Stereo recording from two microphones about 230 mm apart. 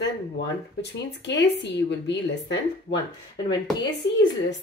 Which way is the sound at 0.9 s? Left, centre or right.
Left.